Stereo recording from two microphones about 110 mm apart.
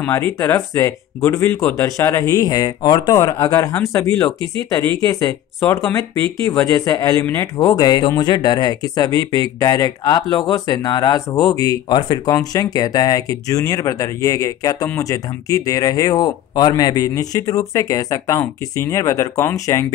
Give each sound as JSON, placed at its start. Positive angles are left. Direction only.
{"t": 0.0, "sound": "speech", "side_deg": 25}
{"t": 5.0, "sound": "speech", "side_deg": 30}